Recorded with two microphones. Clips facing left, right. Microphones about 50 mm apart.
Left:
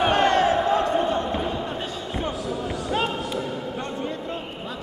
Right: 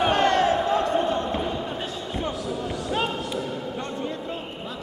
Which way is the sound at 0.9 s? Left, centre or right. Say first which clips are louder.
Left 1 dB; centre.